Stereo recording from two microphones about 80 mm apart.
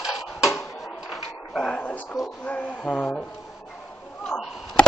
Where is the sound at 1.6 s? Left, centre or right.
Centre.